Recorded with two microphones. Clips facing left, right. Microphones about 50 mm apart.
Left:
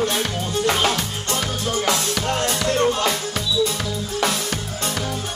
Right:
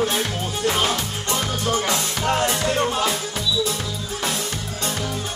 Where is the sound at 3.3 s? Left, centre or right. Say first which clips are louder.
Left 2 dB; left.